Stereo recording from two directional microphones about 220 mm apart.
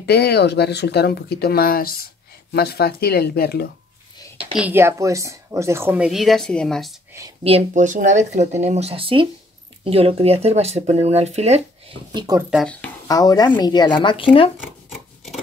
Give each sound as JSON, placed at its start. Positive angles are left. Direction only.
{"t": 0.0, "sound": "speech", "side_deg": 50}
{"t": 4.6, "sound": "a woman's voice", "side_deg": -10}
{"t": 7.4, "sound": "speech", "side_deg": -30}
{"t": 12.1, "sound": "a woman's voice", "side_deg": -15}
{"t": 12.4, "sound": "speech", "side_deg": 0}
{"t": 13.1, "sound": "speech", "side_deg": 15}
{"t": 14.9, "sound": "scissors", "side_deg": 0}